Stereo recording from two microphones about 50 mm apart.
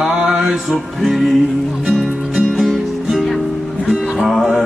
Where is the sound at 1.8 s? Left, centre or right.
Centre.